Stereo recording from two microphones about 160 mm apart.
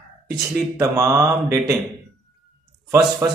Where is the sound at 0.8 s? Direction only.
20° right (ahead or behind).